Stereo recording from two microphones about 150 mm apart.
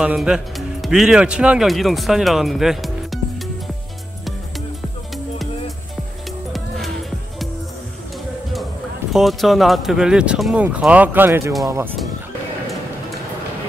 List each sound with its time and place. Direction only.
0.0 s speech: 5° right (ahead or behind)
6.5 s music: centre (ahead or behind)
9.1 s speech: centre (ahead or behind); by 11.9 s 20° right (ahead or behind)